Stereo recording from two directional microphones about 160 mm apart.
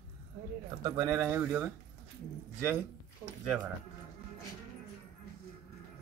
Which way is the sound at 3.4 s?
5° right (ahead or behind).